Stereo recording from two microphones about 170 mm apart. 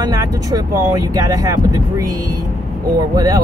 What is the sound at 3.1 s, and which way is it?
Speech, 20° right (ahead or behind).